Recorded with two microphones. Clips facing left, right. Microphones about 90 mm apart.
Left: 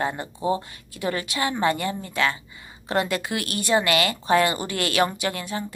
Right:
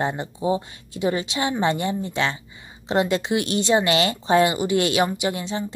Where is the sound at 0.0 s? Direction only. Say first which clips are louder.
Right 2 dB; 20° right (ahead or behind).